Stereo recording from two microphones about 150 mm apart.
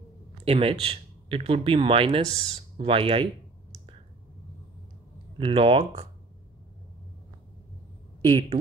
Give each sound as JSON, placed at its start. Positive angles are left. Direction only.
{"t": 0.5, "sound": "speech", "side_deg": -40}
{"t": 5.4, "sound": "speech", "side_deg": -35}
{"t": 8.3, "sound": "speech", "side_deg": -35}